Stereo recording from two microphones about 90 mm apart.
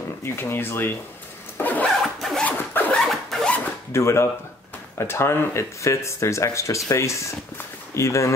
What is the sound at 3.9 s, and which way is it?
Speech, 30° left (ahead or behind).